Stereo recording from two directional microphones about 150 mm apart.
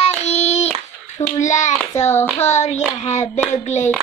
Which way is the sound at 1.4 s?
50° left (ahead or behind).